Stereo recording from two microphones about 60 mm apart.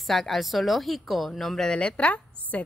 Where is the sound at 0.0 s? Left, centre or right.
Centre.